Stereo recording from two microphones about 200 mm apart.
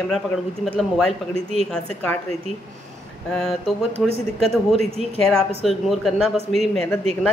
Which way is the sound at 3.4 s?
Centre (ahead or behind).